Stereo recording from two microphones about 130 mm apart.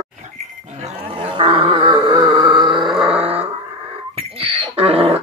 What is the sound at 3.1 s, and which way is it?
Dog, 10° right (ahead or behind).